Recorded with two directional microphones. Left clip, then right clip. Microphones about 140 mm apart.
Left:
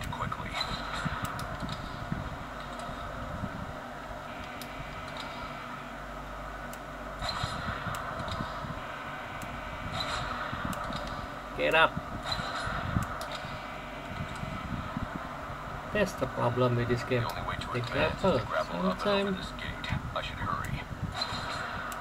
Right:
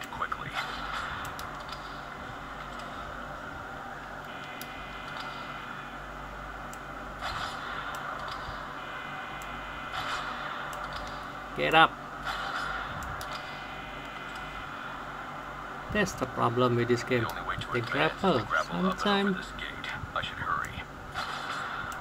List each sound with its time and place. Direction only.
11.5 s speech: 40° right (ahead or behind)
15.9 s speech: 40° right (ahead or behind)